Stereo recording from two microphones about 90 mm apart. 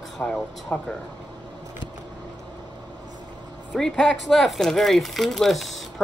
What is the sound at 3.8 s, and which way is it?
Speech, 5° left (ahead or behind).